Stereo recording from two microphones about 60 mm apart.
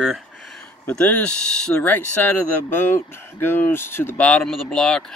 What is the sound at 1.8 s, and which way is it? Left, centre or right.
Speech, left.